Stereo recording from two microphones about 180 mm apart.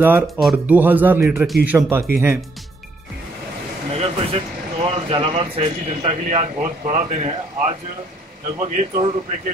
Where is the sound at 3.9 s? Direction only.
35° right (ahead or behind).